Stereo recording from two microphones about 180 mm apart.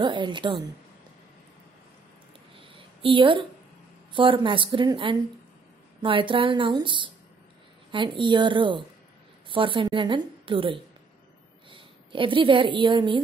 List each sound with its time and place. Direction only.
0.0 s a woman's voice: 25° right (ahead or behind)
3.0 s a woman's voice: 30° right (ahead or behind)